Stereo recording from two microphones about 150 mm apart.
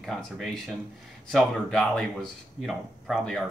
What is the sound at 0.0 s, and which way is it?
Speech, centre (ahead or behind).